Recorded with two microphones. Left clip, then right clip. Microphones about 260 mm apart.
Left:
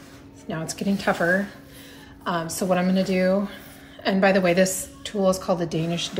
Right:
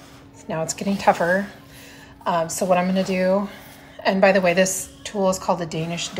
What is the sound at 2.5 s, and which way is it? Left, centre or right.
Speech, centre.